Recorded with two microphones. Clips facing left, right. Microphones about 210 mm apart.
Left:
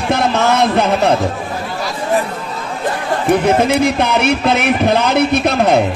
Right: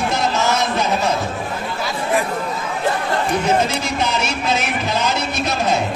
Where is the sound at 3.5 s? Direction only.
60° left (ahead or behind).